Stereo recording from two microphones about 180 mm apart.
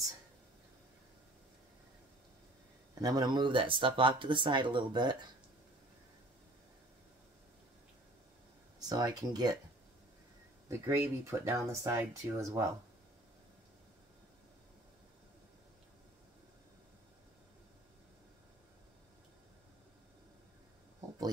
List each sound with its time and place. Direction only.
2.9 s speech: 20° right (ahead or behind)
8.7 s speech: 20° right (ahead or behind)
10.7 s speech: 15° right (ahead or behind)